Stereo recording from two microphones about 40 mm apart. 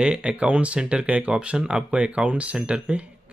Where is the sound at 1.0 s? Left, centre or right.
Right.